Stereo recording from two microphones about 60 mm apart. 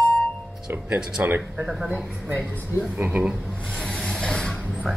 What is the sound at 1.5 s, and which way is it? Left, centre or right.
Speech, centre.